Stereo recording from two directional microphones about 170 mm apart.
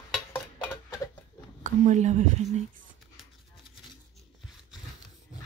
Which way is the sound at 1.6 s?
45° right (ahead or behind).